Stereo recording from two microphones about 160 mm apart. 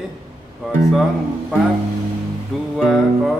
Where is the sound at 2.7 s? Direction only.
Centre (ahead or behind).